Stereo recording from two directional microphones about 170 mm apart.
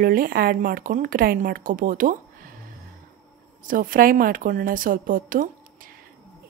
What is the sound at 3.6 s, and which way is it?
A woman's voice, 55° right (ahead or behind).